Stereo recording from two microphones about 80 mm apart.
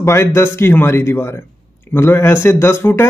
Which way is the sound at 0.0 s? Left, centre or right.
Left.